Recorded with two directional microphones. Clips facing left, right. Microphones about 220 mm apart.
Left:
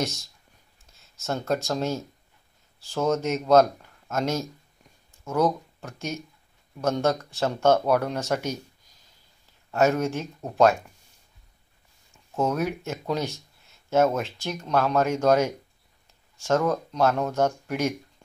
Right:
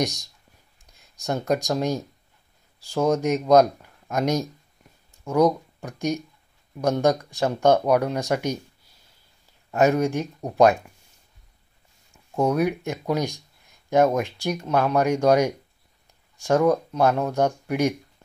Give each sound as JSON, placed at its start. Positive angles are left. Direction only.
{"t": 0.0, "sound": "speech", "side_deg": -15}
{"t": 12.4, "sound": "speech", "side_deg": -10}